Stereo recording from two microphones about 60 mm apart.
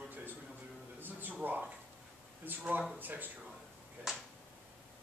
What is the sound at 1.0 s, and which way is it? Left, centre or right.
A man's voice, right.